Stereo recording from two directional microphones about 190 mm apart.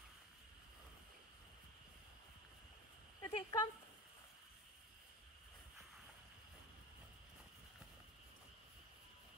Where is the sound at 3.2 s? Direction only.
20° left (ahead or behind).